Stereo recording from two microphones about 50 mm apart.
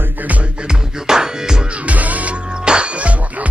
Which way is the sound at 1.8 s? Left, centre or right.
Right.